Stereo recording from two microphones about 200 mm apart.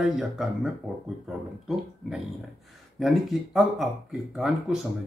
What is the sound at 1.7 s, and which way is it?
Speech, centre (ahead or behind).